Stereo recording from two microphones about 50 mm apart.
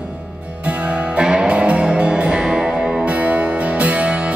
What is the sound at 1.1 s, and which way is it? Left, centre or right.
Music, centre.